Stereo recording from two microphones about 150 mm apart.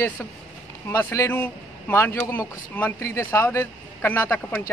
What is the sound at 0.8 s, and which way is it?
Speech, 20° left (ahead or behind).